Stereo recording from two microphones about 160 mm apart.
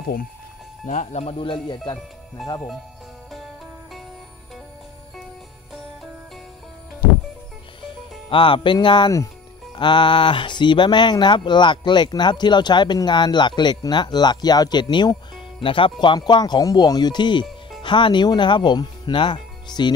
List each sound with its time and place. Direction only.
0.8 s speech: 45° left (ahead or behind)
8.3 s speech: 30° left (ahead or behind)